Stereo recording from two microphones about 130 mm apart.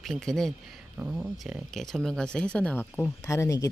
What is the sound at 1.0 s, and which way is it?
Speech, 10° right (ahead or behind).